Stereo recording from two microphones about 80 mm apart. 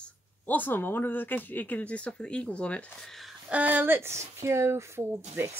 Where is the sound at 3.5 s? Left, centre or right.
Centre.